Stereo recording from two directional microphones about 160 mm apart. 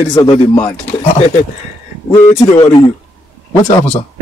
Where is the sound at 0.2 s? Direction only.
25° left (ahead or behind).